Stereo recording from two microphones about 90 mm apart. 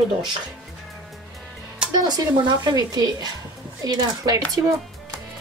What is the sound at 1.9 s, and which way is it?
Speech, 50° right (ahead or behind).